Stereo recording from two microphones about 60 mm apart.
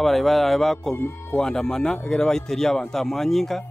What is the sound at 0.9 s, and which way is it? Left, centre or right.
Speech, left.